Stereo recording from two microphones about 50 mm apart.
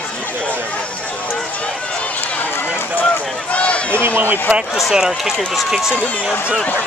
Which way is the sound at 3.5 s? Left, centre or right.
Left.